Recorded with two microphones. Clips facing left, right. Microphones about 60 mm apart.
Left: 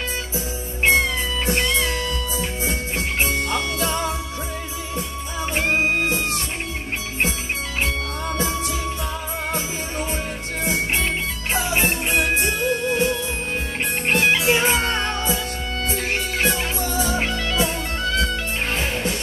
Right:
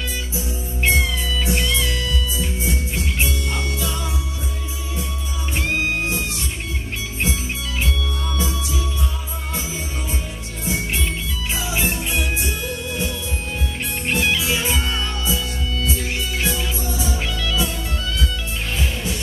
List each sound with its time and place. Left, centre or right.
0.8 s music: left
5.5 s music: left
7.8 s music: left
10.6 s music: left
17.2 s music: left